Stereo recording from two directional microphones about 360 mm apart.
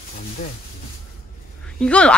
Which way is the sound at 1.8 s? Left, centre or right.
Centre.